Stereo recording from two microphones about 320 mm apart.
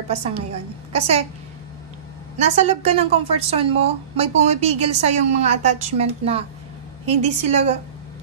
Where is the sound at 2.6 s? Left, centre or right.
Centre.